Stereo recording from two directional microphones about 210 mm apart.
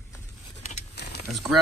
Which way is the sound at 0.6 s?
35° left (ahead or behind).